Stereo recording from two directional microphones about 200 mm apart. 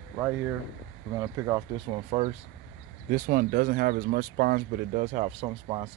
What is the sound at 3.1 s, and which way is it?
Speech, 45° right (ahead or behind).